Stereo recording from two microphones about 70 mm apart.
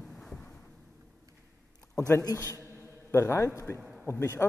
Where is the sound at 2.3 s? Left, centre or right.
Left.